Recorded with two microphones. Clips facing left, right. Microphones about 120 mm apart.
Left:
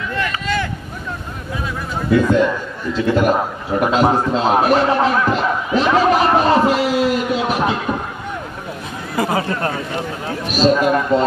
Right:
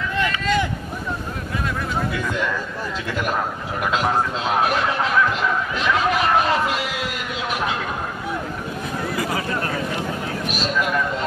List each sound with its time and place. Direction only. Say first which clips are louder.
2.2 s a man's voice: left 8 dB; 25° left (ahead or behind)
9.1 s a sound: left 9 dB; 30° left (ahead or behind)
10.6 s a man's voice: left 9 dB; 35° left (ahead or behind)